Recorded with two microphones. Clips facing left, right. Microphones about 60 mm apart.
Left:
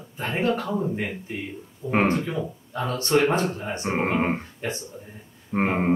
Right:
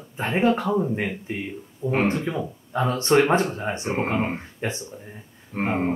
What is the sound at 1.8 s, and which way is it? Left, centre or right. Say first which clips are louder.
Speech: right 1 dB; right.